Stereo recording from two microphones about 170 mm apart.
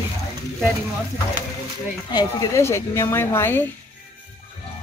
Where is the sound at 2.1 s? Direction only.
15° left (ahead or behind).